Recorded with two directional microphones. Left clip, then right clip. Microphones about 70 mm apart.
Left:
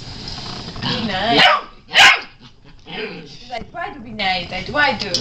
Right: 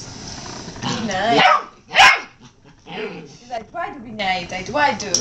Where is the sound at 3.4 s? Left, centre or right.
Centre.